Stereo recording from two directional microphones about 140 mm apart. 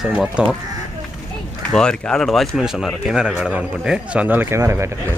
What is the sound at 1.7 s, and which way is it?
Speech, 5° left (ahead or behind).